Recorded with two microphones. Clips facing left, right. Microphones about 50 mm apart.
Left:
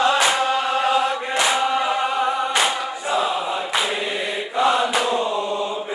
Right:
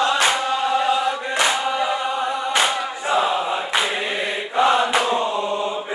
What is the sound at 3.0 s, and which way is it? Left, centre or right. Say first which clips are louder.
Choir: right 2 dB; centre.